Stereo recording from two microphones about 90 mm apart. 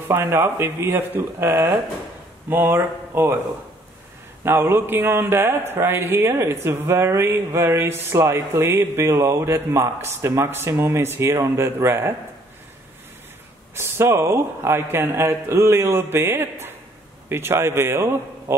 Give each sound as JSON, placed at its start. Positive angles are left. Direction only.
{"t": 0.1, "sound": "speech", "side_deg": -25}
{"t": 4.5, "sound": "speech", "side_deg": -25}
{"t": 13.7, "sound": "speech", "side_deg": -30}